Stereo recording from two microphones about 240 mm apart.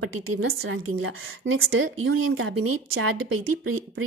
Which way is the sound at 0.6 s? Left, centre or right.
Right.